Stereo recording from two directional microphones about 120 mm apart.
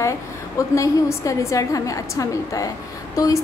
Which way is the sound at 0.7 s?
25° left (ahead or behind).